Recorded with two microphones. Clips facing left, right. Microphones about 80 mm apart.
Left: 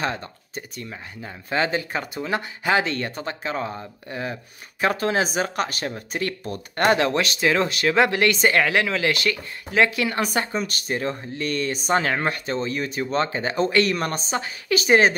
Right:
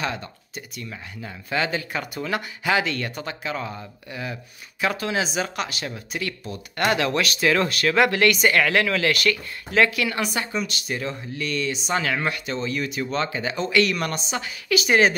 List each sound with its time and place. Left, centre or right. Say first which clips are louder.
0.0 s speech: left 2 dB; left
10.2 s speech: left 2 dB; left